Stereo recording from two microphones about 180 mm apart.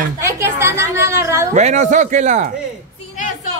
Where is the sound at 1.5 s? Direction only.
40° right (ahead or behind).